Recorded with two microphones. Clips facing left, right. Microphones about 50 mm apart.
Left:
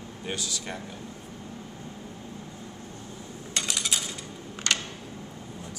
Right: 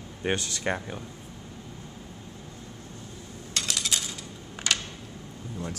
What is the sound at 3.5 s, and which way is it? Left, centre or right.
Coin, centre.